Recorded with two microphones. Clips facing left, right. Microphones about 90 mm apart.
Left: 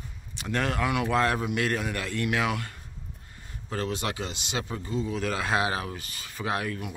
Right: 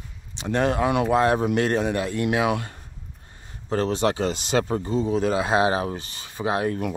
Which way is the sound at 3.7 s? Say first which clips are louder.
Right 8 dB; 35° right (ahead or behind).